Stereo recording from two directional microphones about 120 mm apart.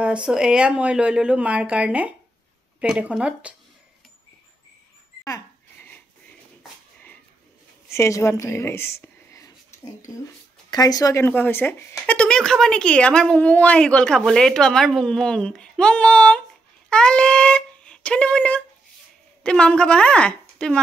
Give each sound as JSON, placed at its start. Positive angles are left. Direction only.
{"t": 0.0, "sound": "speech", "side_deg": -10}
{"t": 5.8, "sound": "a sound", "side_deg": 15}
{"t": 7.9, "sound": "speech", "side_deg": 25}
{"t": 11.2, "sound": "a woman's voice", "side_deg": 15}